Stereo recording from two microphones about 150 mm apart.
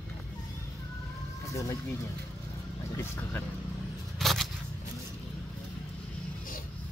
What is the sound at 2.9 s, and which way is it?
Speech, 15° left (ahead or behind).